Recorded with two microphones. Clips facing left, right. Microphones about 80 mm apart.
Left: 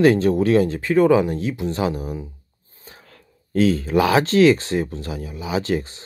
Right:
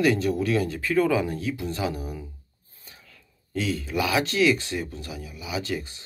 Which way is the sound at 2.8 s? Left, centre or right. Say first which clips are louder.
Left 6 dB; left.